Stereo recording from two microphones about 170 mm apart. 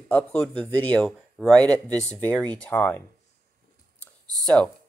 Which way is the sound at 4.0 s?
5° left (ahead or behind).